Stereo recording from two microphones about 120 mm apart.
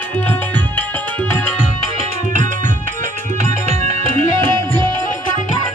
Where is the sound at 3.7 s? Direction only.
65° right (ahead or behind).